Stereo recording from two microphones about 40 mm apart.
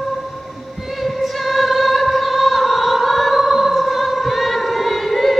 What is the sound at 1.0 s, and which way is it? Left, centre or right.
Music, centre.